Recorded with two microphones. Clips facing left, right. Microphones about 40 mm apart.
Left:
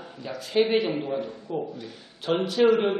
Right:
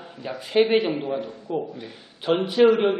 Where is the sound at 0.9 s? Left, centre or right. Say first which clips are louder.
Right 2 dB; centre.